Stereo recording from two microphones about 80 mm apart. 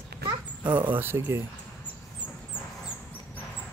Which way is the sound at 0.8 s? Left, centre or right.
Right.